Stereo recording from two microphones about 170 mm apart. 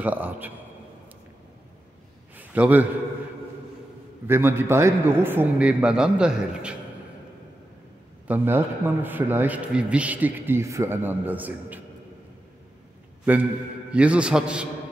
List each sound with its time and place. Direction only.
0.0 s a man's voice: 10° right (ahead or behind)
2.3 s a sound: 10° right (ahead or behind)
4.3 s a man's voice: 15° right (ahead or behind)
8.3 s a man's voice: 10° right (ahead or behind)
13.2 s a man's voice: 10° right (ahead or behind)